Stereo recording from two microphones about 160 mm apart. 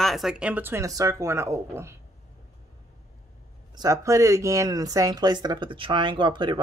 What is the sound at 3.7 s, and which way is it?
Speech, 20° right (ahead or behind).